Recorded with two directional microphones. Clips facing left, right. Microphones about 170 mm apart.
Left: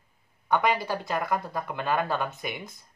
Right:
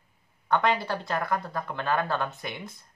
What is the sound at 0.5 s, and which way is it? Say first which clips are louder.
Speech: even; centre (ahead or behind).